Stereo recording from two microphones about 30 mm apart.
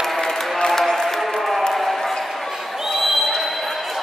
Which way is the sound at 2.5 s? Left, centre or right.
Centre.